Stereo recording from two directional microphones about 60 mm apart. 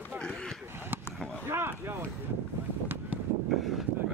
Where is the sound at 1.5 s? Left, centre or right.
Right.